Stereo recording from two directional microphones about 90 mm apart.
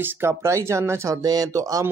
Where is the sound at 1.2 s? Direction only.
45° right (ahead or behind).